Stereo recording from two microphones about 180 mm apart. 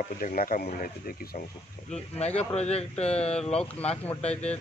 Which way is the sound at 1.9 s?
35° left (ahead or behind).